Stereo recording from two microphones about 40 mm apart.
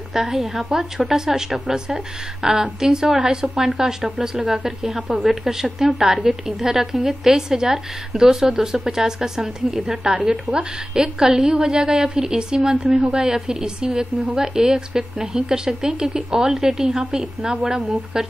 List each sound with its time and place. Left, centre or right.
0.1 s a woman's voice: centre